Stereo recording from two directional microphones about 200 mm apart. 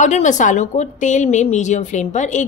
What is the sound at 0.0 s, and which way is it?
A woman's voice, 40° left (ahead or behind).